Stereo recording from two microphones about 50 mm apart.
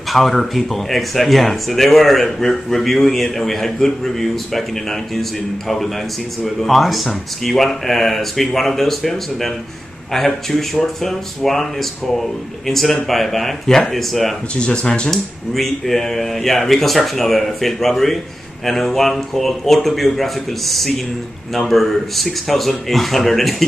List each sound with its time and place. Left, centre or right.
0.1 s speech: centre
6.4 s speech: centre
14.5 s speech: left
15.0 s speech: centre